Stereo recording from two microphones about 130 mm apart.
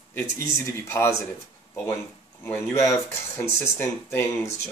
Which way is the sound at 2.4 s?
20° left (ahead or behind).